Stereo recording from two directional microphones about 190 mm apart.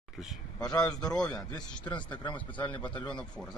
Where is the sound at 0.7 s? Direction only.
5° left (ahead or behind).